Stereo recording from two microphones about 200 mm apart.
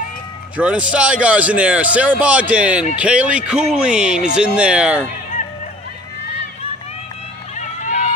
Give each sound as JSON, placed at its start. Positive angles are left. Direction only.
{"t": 0.6, "sound": "a man's voice", "side_deg": -5}
{"t": 7.5, "sound": "run", "side_deg": 35}